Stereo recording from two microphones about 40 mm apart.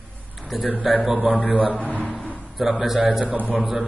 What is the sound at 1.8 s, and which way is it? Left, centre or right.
Speech, left.